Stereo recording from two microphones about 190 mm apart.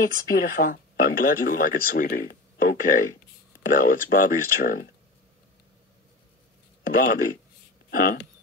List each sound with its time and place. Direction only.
0.0 s speech: 50° left (ahead or behind)
7.0 s speech: 50° left (ahead or behind)